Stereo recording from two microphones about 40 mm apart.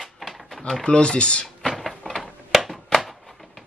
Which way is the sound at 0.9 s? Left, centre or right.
Left.